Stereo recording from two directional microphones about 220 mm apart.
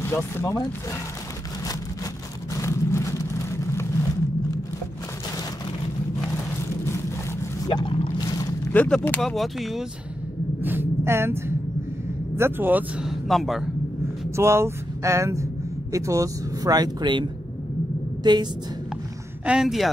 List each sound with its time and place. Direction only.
0.0 s speech: 10° left (ahead or behind)
2.5 s vehicle: 15° left (ahead or behind)
7.6 s boat: 20° left (ahead or behind); by 9.8 s centre (ahead or behind)
10.6 s a sound: 10° right (ahead or behind)
12.4 s speech: 10° right (ahead or behind)
14.3 s a woman's voice: 10° right (ahead or behind)
19.4 s speech: 5° right (ahead or behind)